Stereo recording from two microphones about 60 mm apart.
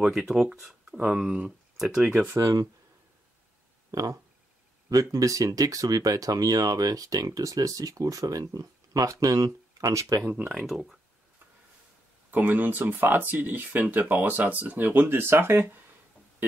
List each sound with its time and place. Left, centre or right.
0.0 s speech: centre
2.3 s speech: right
3.9 s speech: right
10.5 s speech: centre
12.3 s speech: right